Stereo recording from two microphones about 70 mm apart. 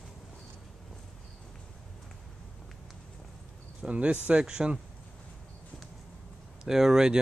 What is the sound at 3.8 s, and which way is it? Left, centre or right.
Speech, centre.